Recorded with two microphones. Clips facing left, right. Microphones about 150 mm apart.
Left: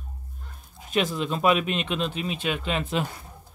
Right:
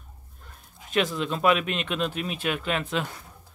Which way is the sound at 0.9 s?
5° left (ahead or behind).